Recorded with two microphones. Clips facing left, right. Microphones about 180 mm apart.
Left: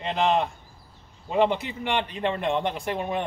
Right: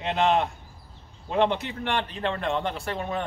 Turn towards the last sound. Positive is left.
turn(degrees=15)  # may be behind; listen again after turning